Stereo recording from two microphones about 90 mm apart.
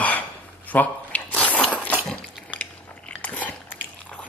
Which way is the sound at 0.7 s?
15° left (ahead or behind).